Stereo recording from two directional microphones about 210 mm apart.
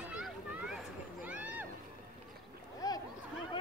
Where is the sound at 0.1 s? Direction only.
Centre (ahead or behind).